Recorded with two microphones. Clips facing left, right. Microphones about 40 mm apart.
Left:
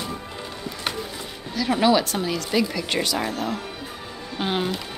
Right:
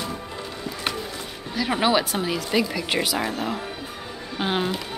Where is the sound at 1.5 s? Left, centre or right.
Centre.